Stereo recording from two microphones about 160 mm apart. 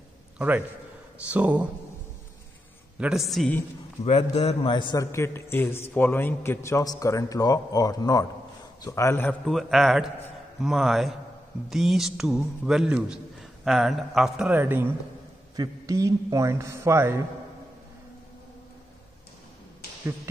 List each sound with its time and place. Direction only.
0.4 s speech: 10° right (ahead or behind)
3.0 s a man's voice: centre (ahead or behind)
4.0 s a man's voice: 40° left (ahead or behind)
5.1 s a man's voice: 15° left (ahead or behind)
9.5 s a man's voice: centre (ahead or behind); by 17.2 s 15° right (ahead or behind)